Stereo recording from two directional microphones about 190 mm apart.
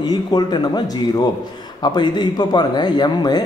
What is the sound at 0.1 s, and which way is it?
A man's voice, 20° left (ahead or behind).